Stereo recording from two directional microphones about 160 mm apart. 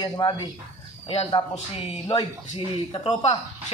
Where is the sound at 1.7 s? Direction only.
25° left (ahead or behind).